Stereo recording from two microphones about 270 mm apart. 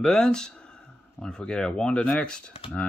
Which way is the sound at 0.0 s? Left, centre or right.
Centre.